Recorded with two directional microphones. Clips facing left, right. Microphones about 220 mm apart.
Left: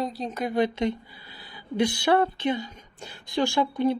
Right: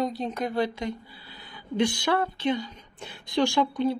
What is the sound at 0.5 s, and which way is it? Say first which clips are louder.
Speech: left 7 dB; 20° left (ahead or behind).